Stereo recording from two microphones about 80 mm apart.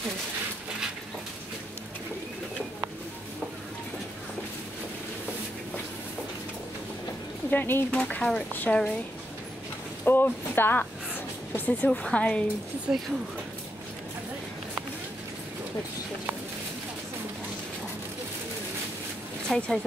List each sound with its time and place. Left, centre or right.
7.5 s speech: left
8.0 s speech: centre
10.0 s speech: left
12.9 s speech: right
19.5 s speech: centre